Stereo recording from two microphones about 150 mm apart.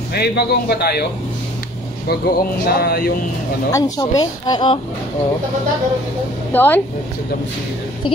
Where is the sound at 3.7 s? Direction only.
25° left (ahead or behind).